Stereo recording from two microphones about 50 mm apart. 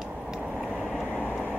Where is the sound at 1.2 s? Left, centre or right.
Left.